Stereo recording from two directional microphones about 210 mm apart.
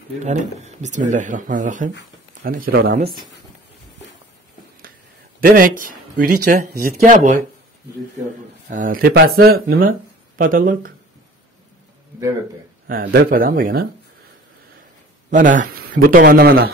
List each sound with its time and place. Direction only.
0.2 s speech: 35° right (ahead or behind)
5.4 s speech: 40° right (ahead or behind)
8.6 s speech: 40° right (ahead or behind)
13.1 s speech: 45° right (ahead or behind)
15.2 s speech: 40° right (ahead or behind)